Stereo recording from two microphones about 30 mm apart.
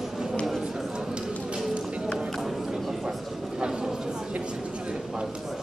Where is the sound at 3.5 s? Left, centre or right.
Right.